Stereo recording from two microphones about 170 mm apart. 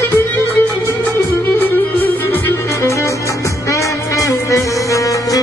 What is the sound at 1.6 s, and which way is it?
Music, 10° left (ahead or behind).